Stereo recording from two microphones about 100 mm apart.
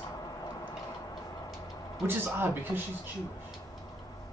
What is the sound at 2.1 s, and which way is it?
Speech, 20° right (ahead or behind).